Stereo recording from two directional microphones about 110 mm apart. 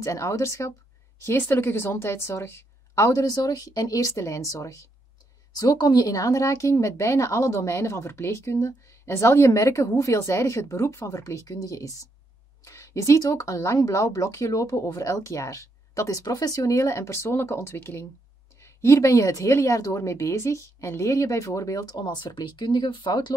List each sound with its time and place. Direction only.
0.0 s speech: 30° left (ahead or behind); by 23.3 s 45° left (ahead or behind)